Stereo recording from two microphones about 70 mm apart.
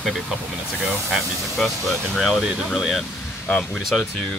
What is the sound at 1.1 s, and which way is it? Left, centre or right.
Speech, centre.